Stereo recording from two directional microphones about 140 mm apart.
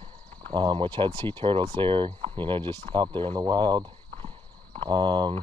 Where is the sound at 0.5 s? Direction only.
35° right (ahead or behind).